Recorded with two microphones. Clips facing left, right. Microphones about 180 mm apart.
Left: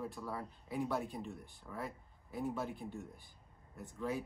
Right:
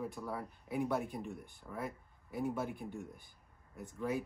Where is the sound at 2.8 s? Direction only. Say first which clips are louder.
Right 1 dB; centre (ahead or behind).